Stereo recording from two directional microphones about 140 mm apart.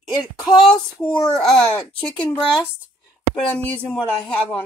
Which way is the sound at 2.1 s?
30° left (ahead or behind).